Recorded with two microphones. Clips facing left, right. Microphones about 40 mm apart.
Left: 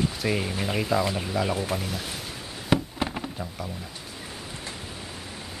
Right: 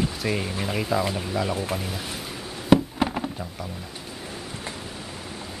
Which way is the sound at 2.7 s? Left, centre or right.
Centre.